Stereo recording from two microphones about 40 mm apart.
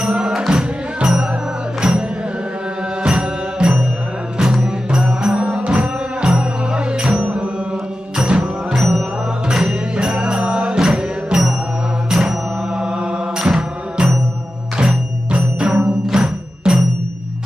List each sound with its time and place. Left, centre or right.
0.5 s music: centre
8.7 s music: centre
9.5 s music: centre
12.1 s mantra: centre
13.4 s music: centre